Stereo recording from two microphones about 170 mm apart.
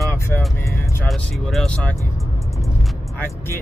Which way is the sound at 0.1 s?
15° left (ahead or behind).